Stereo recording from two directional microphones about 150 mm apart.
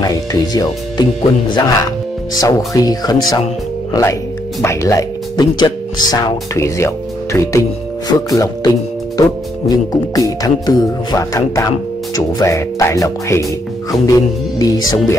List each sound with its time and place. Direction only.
0.3 s speech: 25° left (ahead or behind)